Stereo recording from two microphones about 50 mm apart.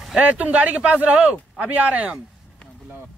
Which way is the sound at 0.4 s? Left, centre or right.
Right.